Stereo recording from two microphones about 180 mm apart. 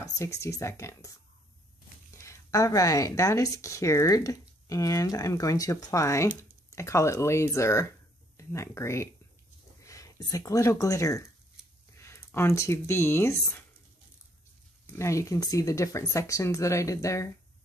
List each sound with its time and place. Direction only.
0.0 s speech: 15° left (ahead or behind)
2.2 s speech: 20° left (ahead or behind)
14.9 s speech: 15° left (ahead or behind)